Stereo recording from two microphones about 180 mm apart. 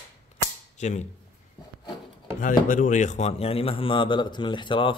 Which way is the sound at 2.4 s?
45° left (ahead or behind).